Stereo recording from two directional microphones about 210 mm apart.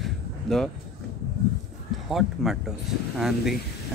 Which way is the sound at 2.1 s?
Centre (ahead or behind).